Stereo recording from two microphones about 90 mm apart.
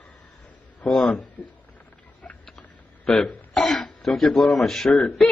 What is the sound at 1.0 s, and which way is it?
Speech, 15° left (ahead or behind).